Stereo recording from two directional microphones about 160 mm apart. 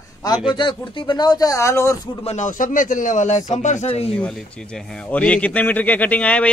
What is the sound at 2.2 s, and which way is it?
Speech, 50° left (ahead or behind).